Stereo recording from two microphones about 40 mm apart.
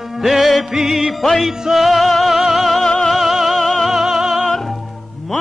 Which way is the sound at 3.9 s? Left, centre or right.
Centre.